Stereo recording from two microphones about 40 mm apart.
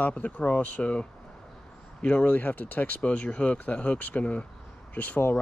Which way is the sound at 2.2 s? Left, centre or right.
Left.